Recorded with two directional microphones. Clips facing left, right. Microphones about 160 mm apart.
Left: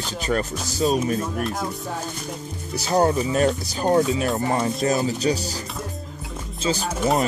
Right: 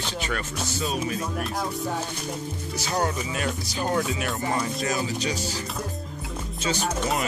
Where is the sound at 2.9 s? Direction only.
30° left (ahead or behind).